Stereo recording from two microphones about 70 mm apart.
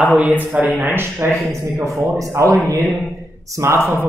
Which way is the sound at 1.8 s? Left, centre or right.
Right.